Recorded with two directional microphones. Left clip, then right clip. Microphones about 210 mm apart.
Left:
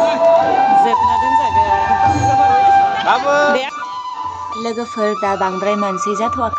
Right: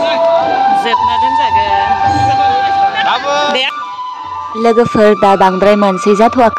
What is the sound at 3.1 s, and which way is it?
Speech, 45° left (ahead or behind).